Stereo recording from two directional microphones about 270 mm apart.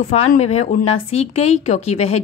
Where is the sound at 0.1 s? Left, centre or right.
Left.